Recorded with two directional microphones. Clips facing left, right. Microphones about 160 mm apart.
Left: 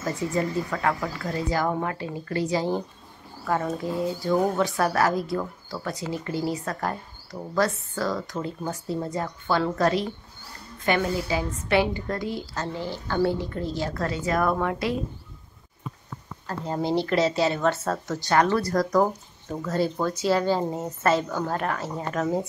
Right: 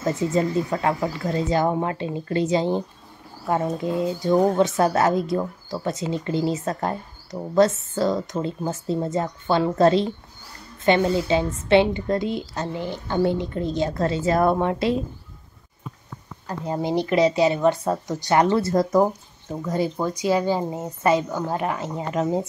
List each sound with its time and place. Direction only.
0.0 s speech: 20° right (ahead or behind)
16.4 s speech: 15° right (ahead or behind)